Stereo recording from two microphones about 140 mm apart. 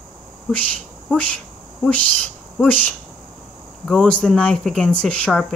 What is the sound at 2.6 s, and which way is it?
Speech, 15° left (ahead or behind).